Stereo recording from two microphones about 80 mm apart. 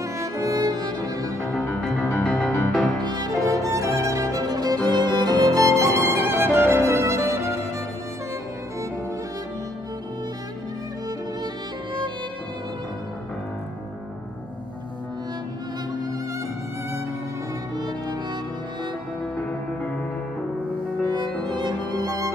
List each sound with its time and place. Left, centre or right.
0.0 s cello: right
2.0 s music: left
3.0 s music: right
4.3 s violin: right
4.9 s music: right
5.4 s violin: right
17.7 s music: right
19.3 s music: centre
21.5 s violin: right